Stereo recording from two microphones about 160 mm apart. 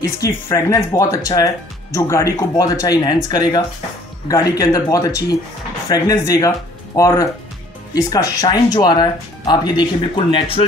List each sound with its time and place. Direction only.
0.0 s speech: 20° left (ahead or behind)